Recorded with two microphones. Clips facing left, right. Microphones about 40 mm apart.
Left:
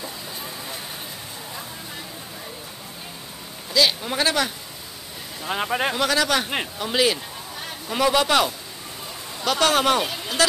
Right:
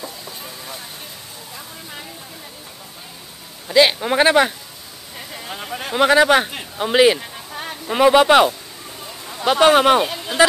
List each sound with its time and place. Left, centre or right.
0.0 s vehicle: centre
3.6 s a man's voice: right
5.5 s speech: left
5.9 s a man's voice: right